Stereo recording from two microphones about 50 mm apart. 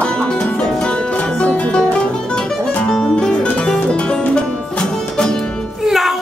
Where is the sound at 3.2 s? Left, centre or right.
Centre.